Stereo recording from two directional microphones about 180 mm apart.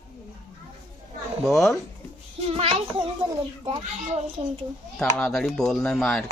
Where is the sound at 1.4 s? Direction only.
Centre (ahead or behind).